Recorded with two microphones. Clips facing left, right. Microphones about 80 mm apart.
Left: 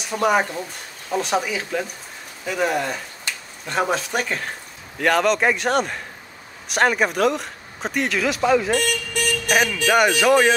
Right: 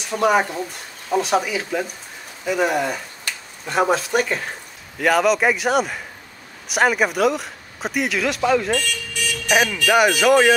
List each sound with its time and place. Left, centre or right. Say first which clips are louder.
0.0 s speech: right 1 dB; centre
8.7 s vehicle: left 2 dB; left
9.5 s speech: right 2 dB; centre